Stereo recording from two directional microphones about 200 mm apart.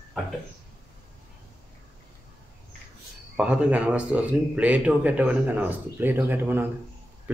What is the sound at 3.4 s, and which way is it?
Speech, 5° right (ahead or behind).